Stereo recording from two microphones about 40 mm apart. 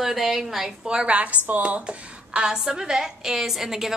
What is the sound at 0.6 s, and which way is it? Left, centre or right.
Speech, centre.